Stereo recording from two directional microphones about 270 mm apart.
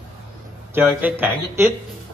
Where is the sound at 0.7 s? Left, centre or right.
Centre.